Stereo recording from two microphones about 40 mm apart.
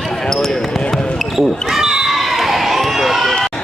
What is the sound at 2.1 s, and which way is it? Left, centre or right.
Run, centre.